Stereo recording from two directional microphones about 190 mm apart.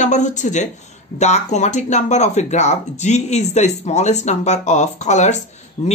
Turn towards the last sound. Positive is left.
turn(degrees=30)  # may be behind; listen again after turning